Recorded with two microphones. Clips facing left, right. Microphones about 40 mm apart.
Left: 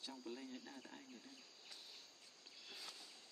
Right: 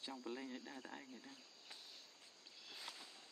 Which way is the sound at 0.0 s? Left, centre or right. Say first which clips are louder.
Right 3 dB; right.